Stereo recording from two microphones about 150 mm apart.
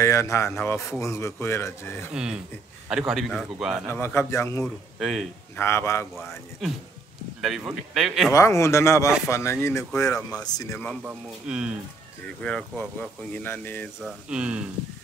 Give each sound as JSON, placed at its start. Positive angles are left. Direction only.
{"t": 0.0, "sound": "speech", "side_deg": 20}
{"t": 2.1, "sound": "speech", "side_deg": -5}
{"t": 3.9, "sound": "speech", "side_deg": 15}
{"t": 4.9, "sound": "a man's voice", "side_deg": 0}
{"t": 5.6, "sound": "speech", "side_deg": 15}
{"t": 6.6, "sound": "speech", "side_deg": 0}
{"t": 8.3, "sound": "speech", "side_deg": 20}
{"t": 10.9, "sound": "speech", "side_deg": -5}
{"t": 12.4, "sound": "speech", "side_deg": 5}
{"t": 14.0, "sound": "speech", "side_deg": -5}